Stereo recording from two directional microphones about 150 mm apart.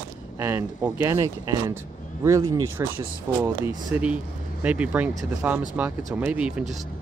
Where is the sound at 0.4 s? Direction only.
15° right (ahead or behind).